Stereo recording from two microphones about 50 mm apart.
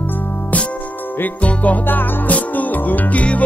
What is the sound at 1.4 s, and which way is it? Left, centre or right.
Music, left.